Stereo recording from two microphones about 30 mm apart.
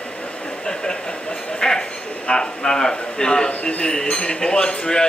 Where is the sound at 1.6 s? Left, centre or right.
Left.